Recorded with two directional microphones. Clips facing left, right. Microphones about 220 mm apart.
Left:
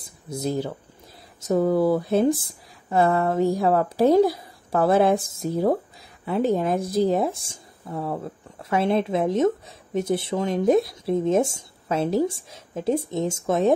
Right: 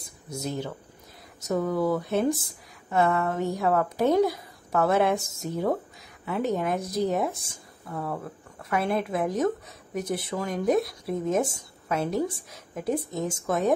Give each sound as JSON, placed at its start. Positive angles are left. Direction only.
{"t": 0.3, "sound": "a woman's voice", "side_deg": 35}